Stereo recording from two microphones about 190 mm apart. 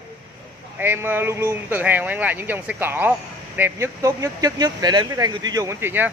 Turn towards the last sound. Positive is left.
turn(degrees=-10)  # may be behind; listen again after turning